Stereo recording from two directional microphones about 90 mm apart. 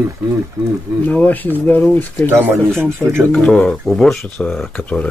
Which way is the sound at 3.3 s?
10° left (ahead or behind).